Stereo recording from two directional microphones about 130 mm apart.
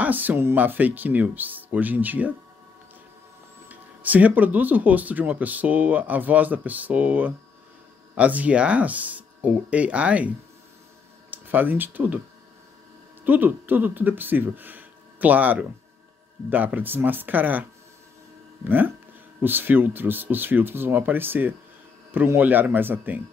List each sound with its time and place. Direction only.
0.0 s speech: 15° right (ahead or behind)
3.6 s speech: 10° right (ahead or behind)
13.2 s speech: 15° right (ahead or behind)